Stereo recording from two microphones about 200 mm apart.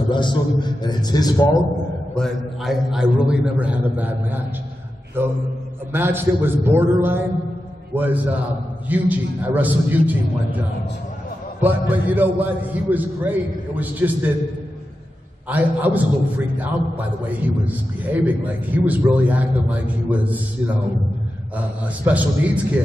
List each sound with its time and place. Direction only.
0.1 s a man's voice: 25° left (ahead or behind)
2.1 s a man's voice: centre (ahead or behind)
11.6 s a man's voice: 10° right (ahead or behind)
15.4 s a man's voice: 10° right (ahead or behind)